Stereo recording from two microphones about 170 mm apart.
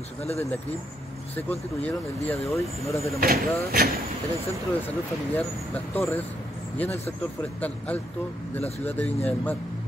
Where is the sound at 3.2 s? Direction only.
60° right (ahead or behind).